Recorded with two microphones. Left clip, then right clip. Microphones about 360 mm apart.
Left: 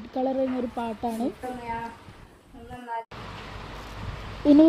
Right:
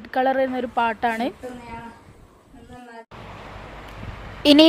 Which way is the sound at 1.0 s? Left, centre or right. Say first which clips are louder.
Right 7 dB; right.